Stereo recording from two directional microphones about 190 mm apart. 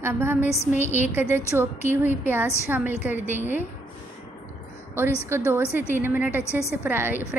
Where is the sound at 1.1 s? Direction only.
10° right (ahead or behind).